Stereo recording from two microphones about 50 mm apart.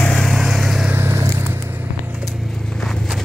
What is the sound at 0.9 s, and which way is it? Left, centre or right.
Vehicle, right.